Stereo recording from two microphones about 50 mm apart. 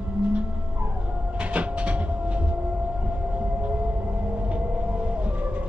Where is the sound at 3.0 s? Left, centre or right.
Right.